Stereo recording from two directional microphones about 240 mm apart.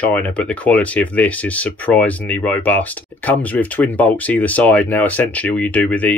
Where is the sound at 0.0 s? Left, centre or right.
Centre.